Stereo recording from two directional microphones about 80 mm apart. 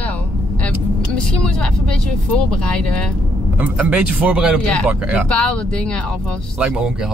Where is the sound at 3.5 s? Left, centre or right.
Right.